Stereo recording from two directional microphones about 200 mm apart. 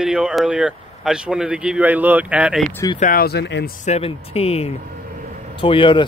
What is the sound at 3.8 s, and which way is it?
Speech, 30° left (ahead or behind).